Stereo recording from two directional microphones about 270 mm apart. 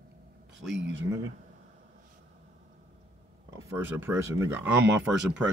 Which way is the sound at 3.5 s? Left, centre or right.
Centre.